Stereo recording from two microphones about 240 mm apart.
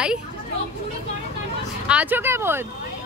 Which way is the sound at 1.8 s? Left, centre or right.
Centre.